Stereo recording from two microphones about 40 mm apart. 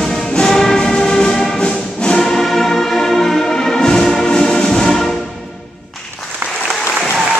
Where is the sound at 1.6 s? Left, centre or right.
Left.